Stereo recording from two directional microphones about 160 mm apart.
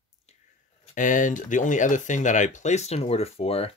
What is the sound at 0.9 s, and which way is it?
Speech, 55° left (ahead or behind).